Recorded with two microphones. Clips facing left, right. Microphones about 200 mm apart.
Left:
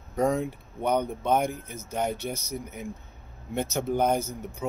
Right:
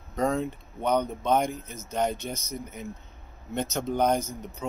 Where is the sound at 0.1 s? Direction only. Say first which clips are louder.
Left 1 dB; 10° left (ahead or behind).